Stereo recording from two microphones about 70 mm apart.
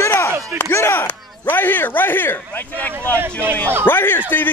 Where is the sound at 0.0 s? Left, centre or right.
Left.